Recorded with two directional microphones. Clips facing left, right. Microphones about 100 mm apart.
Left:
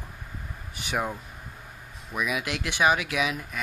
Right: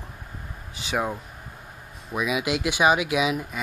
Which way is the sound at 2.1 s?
20° right (ahead or behind).